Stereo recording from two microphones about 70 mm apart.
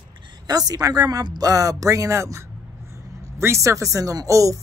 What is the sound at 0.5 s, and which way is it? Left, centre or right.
Speech, right.